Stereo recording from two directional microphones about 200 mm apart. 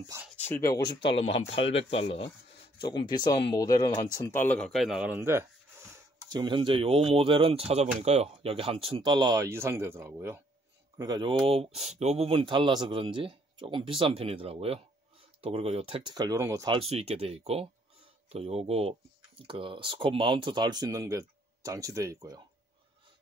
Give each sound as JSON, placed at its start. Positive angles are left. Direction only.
{"t": 0.4, "sound": "speech", "side_deg": 10}
{"t": 1.0, "sound": "speech", "side_deg": 30}